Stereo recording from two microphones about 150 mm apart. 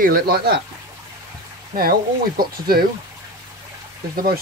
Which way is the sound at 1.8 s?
85° right.